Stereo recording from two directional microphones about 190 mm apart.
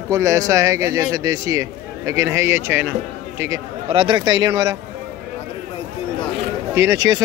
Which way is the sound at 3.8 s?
30° right (ahead or behind).